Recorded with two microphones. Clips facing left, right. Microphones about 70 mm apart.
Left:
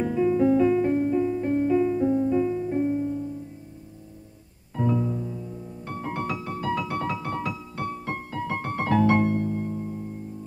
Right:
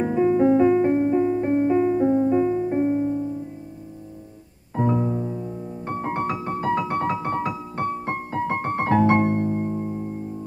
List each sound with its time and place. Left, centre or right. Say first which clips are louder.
0.0 s music: right 3 dB; right
4.7 s music: right 3 dB; right